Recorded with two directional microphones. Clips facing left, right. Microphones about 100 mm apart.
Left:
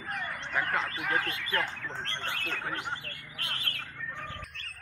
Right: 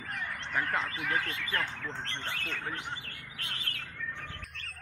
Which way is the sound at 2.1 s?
5° left (ahead or behind).